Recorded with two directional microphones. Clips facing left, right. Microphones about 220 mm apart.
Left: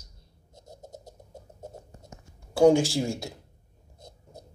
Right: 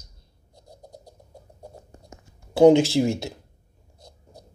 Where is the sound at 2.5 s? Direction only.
20° right (ahead or behind).